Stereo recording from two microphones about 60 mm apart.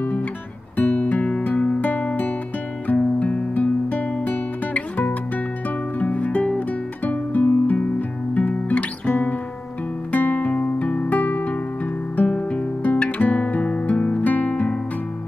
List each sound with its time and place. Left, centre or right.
0.7 s guitar: left
2.9 s music: left
8.4 s guitar: left
10.1 s music: left